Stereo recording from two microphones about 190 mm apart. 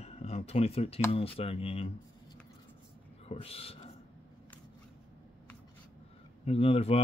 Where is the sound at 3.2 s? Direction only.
30° left (ahead or behind).